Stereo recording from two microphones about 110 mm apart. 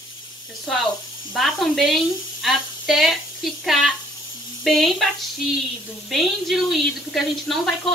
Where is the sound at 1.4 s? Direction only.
Centre (ahead or behind).